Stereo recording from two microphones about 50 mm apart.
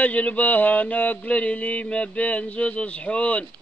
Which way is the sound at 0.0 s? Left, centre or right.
Left.